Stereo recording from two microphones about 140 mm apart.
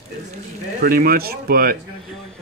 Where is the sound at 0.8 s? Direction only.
90° right.